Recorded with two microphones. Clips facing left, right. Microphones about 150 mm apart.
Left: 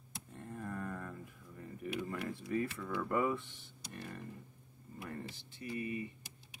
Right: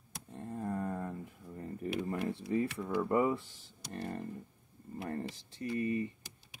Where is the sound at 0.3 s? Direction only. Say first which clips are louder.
Right 6 dB; 25° right (ahead or behind).